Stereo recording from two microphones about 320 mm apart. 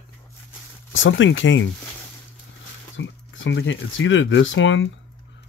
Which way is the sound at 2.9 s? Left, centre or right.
Left.